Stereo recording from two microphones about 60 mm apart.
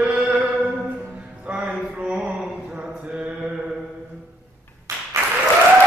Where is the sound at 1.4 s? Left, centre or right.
Right.